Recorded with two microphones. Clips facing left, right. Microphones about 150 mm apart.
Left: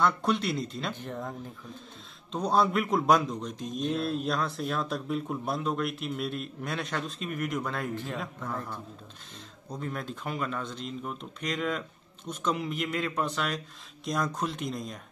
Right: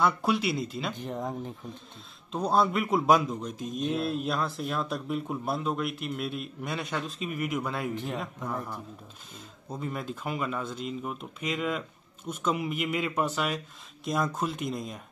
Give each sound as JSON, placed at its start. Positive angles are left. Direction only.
{"t": 0.0, "sound": "a man's voice", "side_deg": -5}
{"t": 1.0, "sound": "speech", "side_deg": -15}
{"t": 2.3, "sound": "a man's voice", "side_deg": 0}
{"t": 7.9, "sound": "speech", "side_deg": -20}
{"t": 8.5, "sound": "a man's voice", "side_deg": -10}